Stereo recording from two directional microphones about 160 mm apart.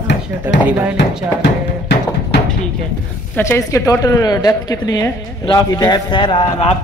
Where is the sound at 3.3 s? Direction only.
15° left (ahead or behind).